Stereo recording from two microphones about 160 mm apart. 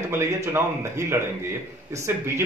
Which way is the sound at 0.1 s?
15° right (ahead or behind).